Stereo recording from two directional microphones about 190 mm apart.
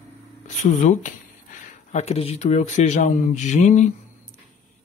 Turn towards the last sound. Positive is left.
turn(degrees=40)  # may be behind; listen again after turning